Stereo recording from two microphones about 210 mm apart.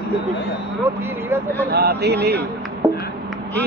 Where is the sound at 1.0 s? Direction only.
10° right (ahead or behind).